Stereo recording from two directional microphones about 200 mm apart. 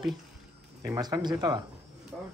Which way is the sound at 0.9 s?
20° right (ahead or behind).